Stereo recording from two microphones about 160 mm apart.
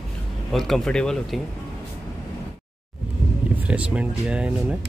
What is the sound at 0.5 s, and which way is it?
Speech, centre (ahead or behind).